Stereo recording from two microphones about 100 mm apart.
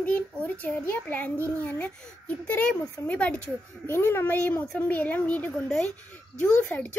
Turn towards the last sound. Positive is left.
turn(degrees=15)  # may be behind; listen again after turning